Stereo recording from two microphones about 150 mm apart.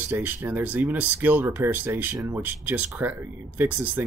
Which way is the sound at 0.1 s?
10° right (ahead or behind).